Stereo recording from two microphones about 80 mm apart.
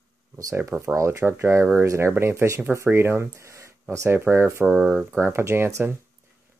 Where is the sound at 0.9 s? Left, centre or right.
Right.